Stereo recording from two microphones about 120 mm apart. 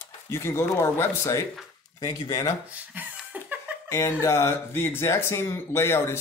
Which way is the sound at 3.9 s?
25° left (ahead or behind).